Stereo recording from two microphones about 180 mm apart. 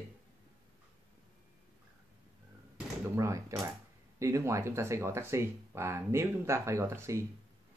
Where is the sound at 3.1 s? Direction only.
15° right (ahead or behind).